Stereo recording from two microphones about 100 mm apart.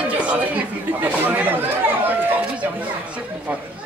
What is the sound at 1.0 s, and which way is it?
Speech, 15° right (ahead or behind).